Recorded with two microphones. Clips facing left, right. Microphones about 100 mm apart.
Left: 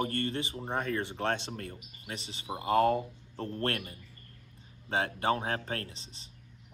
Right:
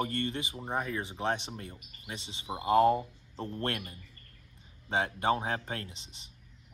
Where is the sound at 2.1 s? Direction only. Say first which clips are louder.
Even; 20° right (ahead or behind).